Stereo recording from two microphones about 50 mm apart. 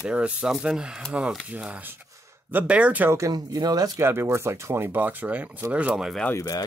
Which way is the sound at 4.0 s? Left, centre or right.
Right.